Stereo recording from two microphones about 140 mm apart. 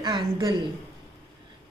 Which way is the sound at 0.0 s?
30° right (ahead or behind).